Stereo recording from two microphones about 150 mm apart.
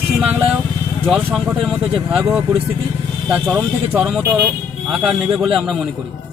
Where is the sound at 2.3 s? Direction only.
15° right (ahead or behind).